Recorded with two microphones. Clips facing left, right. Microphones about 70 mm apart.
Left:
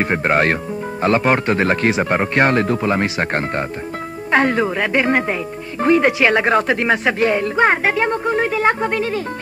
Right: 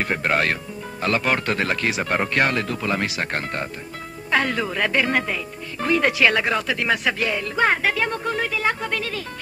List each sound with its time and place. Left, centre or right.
0.0 s speech: left
8.5 s speech: left